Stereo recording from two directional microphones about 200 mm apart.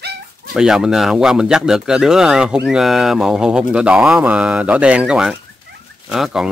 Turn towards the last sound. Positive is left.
turn(degrees=0)  # may be behind; listen again after turning